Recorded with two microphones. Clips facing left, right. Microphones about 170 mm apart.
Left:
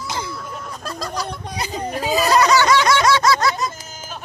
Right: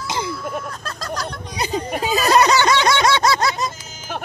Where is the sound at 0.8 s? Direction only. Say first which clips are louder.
Left 1 dB; 10° left (ahead or behind).